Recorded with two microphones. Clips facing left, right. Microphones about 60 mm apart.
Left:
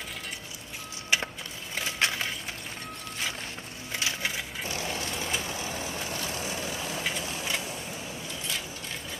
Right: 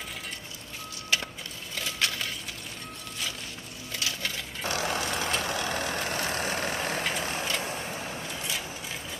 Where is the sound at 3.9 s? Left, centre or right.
Left.